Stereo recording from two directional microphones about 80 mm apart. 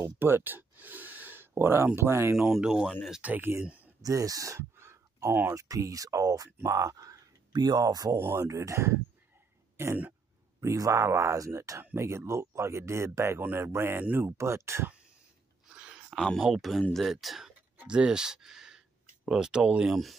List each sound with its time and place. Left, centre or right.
0.0 s a sound: right
2.0 s speech: right
2.3 s speech: centre
3.2 s speech: right
3.6 s a sound: centre
4.0 s a sound: right
5.5 s speech: right
8.2 s speech: right
11.8 s speech: right
13.4 s speech: right
15.7 s a sound: centre
16.4 s speech: centre